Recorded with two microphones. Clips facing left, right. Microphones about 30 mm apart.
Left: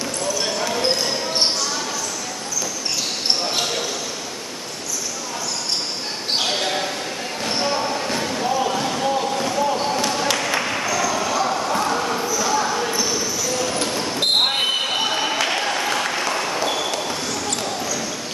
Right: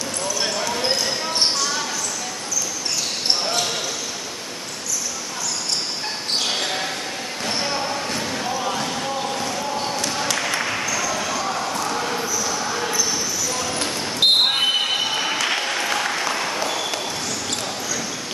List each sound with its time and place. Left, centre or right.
0.7 s basketball bounce: centre
6.5 s basketball bounce: centre
10.3 s a sound: centre
11.0 s basketball bounce: centre
11.7 s basketball bounce: centre
12.0 s basketball bounce: centre
12.3 s basketball bounce: centre
15.0 s applause: centre
16.6 s a sound: centre